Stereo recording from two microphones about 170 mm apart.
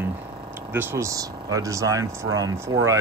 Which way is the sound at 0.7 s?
15° right (ahead or behind).